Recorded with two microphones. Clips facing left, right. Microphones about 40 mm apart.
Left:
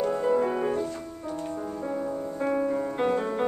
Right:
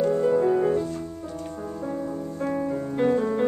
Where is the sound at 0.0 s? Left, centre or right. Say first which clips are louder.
Right 3 dB; centre.